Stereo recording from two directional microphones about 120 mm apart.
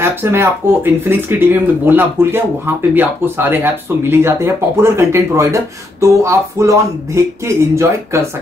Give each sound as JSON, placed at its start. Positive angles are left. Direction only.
{"t": 0.0, "sound": "speech", "side_deg": -20}